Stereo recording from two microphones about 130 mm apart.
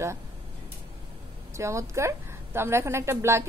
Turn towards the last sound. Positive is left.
turn(degrees=-20)  # may be behind; listen again after turning